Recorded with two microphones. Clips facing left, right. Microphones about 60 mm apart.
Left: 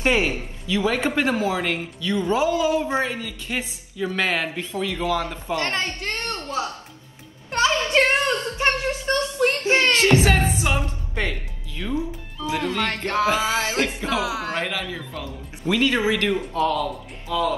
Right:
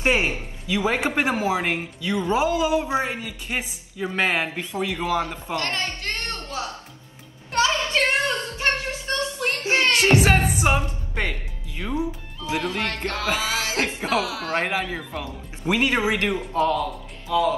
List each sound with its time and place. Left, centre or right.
0.0 s a man's voice: right
5.6 s a woman's voice: left
7.5 s a sound: left
10.0 s speech: right
12.5 s speech: left
13.7 s a man's voice: right
14.2 s speech: left
14.5 s a man's voice: right
15.6 s a woman's voice: right
17.3 s speech: centre